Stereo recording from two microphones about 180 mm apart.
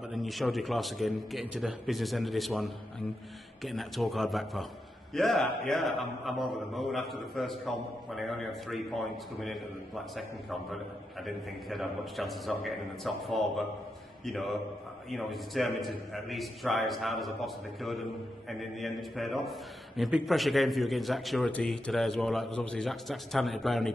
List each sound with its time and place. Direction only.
0.1 s a man's voice: centre (ahead or behind)